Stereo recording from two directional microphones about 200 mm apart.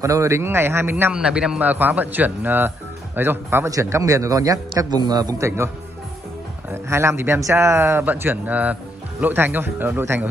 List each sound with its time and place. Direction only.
0.0 s a man's voice: 15° right (ahead or behind)
6.7 s a man's voice: 15° right (ahead or behind)